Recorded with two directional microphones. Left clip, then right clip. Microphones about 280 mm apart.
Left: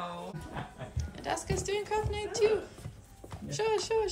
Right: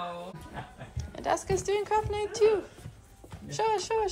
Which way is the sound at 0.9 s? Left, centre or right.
Centre.